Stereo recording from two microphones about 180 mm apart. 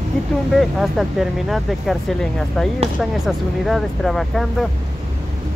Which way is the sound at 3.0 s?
Centre (ahead or behind).